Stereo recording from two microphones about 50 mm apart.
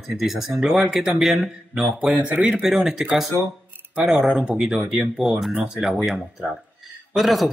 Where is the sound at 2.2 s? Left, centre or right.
Right.